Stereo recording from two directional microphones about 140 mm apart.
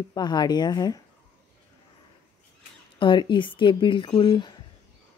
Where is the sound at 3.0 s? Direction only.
35° left (ahead or behind).